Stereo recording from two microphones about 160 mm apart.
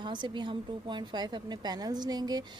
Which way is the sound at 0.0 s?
30° right (ahead or behind).